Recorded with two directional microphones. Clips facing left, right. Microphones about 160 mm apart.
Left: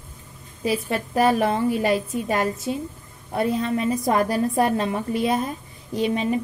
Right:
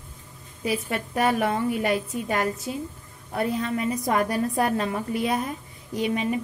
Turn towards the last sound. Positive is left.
turn(degrees=30)  # may be behind; listen again after turning